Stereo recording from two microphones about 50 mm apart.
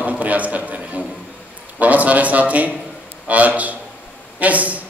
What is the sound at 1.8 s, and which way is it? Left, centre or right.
A man's voice, right.